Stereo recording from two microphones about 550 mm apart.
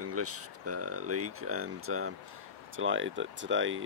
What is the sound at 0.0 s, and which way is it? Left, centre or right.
Speech, right.